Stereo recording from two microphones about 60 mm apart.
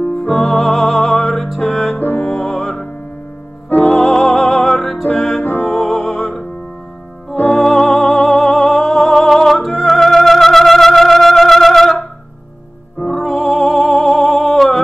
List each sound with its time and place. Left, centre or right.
0.1 s music: centre
2.0 s music: left
2.2 s music: centre
3.8 s music: centre
7.4 s music: centre
13.0 s music: centre